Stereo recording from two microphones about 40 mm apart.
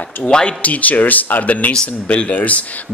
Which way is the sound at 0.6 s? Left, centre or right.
Left.